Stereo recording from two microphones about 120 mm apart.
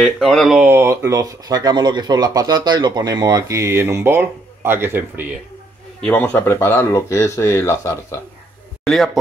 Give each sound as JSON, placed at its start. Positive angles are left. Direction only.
{"t": 0.0, "sound": "speech", "side_deg": 5}
{"t": 0.6, "sound": "speech", "side_deg": -20}
{"t": 5.9, "sound": "speech", "side_deg": 10}
{"t": 8.8, "sound": "speech", "side_deg": 0}